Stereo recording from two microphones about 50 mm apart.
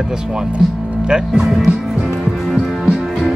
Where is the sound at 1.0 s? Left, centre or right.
Centre.